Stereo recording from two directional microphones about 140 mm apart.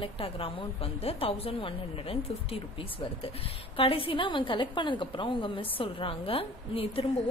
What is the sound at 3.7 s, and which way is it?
A woman's voice, 40° left (ahead or behind).